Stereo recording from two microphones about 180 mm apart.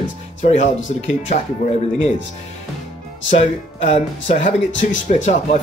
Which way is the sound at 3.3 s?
35° left (ahead or behind).